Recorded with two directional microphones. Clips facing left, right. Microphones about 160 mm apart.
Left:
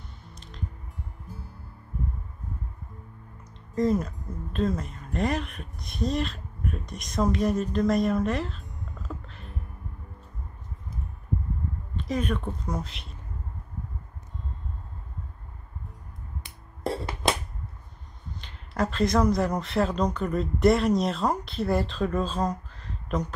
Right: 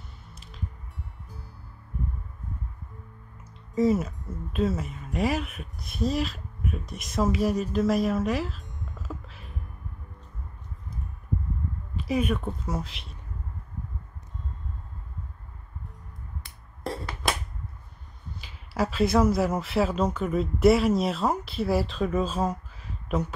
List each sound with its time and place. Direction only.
0.3 s music: 5° right (ahead or behind)
3.7 s speech: 5° right (ahead or behind)
11.9 s speech: 5° right (ahead or behind)
16.9 s a sound: 20° left (ahead or behind)
18.4 s speech: 5° right (ahead or behind)